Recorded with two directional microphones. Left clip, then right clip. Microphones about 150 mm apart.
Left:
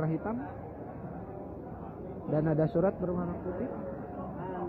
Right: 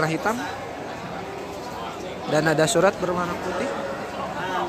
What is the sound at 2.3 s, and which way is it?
Speech, 25° right (ahead or behind).